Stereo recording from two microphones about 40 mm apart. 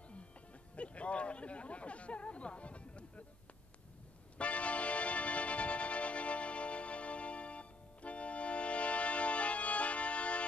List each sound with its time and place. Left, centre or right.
0.7 s speech: left
4.4 s music: left